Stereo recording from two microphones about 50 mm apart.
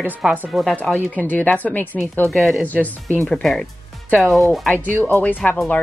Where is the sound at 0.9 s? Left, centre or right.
Left.